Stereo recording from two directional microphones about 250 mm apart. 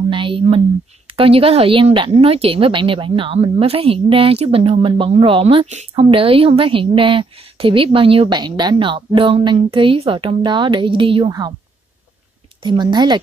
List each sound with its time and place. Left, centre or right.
0.1 s speech: centre
12.6 s a woman's voice: centre